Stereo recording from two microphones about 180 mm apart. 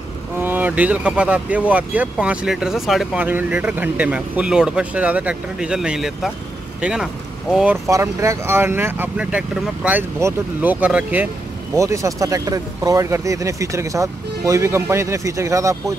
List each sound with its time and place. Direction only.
0.4 s speech: 10° right (ahead or behind)
7.8 s speech: 15° right (ahead or behind)